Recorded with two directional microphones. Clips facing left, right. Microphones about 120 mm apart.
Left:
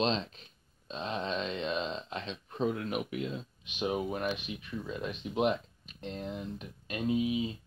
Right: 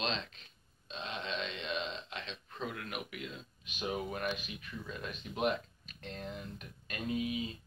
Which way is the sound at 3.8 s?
20° left (ahead or behind).